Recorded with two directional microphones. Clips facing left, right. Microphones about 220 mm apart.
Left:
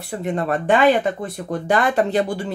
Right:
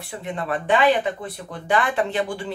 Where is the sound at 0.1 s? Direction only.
40° left (ahead or behind).